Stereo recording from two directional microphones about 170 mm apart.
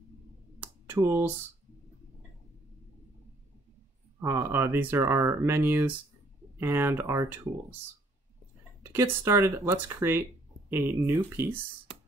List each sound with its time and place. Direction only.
0.6 s a sound: 15° right (ahead or behind)
4.2 s speech: 15° right (ahead or behind)
8.9 s speech: 15° right (ahead or behind)